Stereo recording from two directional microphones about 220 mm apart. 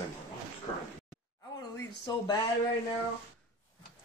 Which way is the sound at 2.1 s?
20° left (ahead or behind).